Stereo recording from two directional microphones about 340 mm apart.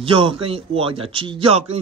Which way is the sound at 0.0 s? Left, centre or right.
Centre.